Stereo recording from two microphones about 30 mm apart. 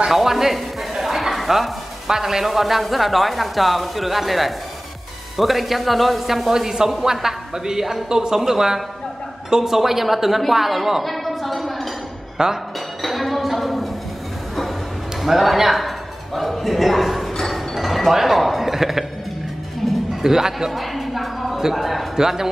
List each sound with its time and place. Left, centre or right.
0.1 s a sound: centre
2.0 s speech: centre
6.5 s a woman's voice: centre
12.4 s speech: right
13.0 s a sound: centre
15.2 s speech: centre
16.3 s a sound: centre
17.4 s music: centre
18.1 s a man's voice: centre
19.8 s music: centre
20.2 s speech: centre
20.7 s music: centre
21.7 s speech: centre
22.1 s speech: centre